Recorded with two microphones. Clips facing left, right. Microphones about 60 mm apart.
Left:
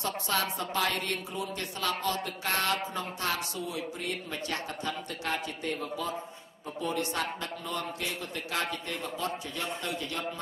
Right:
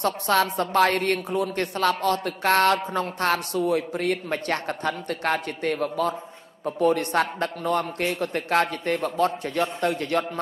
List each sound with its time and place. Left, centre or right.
0.0 s a woman's voice: right